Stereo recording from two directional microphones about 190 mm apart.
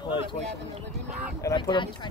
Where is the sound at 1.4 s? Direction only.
20° left (ahead or behind).